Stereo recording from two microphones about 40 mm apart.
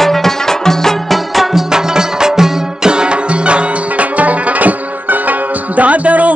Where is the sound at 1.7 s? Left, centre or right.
Centre.